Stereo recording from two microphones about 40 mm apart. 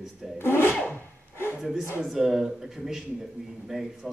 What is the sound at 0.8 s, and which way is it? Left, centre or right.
Rub, left.